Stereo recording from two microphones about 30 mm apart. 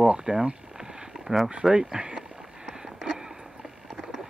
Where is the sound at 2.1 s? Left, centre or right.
Right.